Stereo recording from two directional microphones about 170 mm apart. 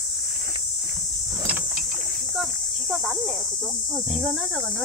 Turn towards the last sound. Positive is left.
turn(degrees=0)  # may be behind; listen again after turning